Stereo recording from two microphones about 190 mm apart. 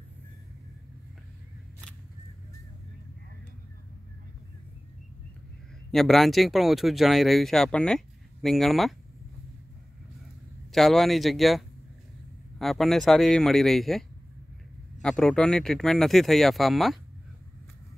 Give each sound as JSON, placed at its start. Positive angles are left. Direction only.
{"t": 5.9, "sound": "speech", "side_deg": 0}
{"t": 10.7, "sound": "speech", "side_deg": 0}